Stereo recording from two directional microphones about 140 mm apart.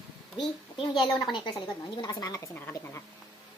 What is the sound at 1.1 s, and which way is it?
A woman's voice, 30° left (ahead or behind).